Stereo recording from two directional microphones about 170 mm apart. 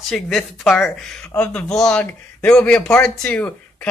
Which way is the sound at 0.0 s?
Centre (ahead or behind).